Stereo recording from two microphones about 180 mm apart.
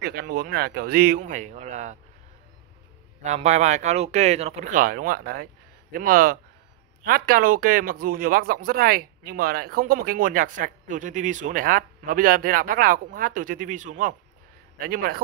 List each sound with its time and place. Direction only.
0.0 s speech: 60° right (ahead or behind); by 2.0 s 40° right (ahead or behind)
3.2 s speech: 40° right (ahead or behind)
14.8 s a man's voice: 55° right (ahead or behind)